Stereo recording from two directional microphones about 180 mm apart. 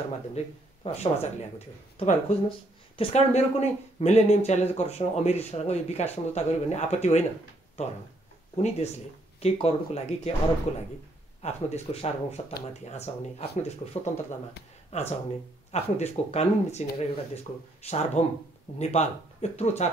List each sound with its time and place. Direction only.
0.8 s speech: 35° left (ahead or behind)